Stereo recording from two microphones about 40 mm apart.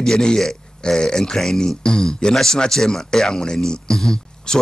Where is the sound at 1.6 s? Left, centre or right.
Centre.